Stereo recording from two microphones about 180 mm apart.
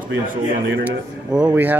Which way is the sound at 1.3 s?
10° right (ahead or behind).